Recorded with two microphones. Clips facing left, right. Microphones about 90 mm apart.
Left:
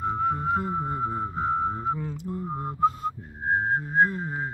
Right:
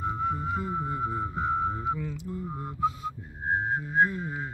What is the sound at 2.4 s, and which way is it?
Whistling, 30° left (ahead or behind).